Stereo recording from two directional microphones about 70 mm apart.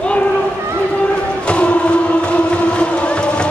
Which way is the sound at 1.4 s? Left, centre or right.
Centre.